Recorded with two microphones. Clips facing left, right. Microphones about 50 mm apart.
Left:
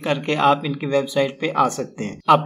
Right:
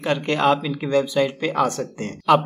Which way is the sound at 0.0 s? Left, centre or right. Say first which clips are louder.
Left 1 dB; centre.